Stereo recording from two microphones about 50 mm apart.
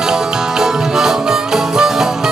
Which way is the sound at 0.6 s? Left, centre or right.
Centre.